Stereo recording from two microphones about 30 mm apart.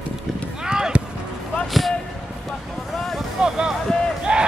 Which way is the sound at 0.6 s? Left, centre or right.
Right.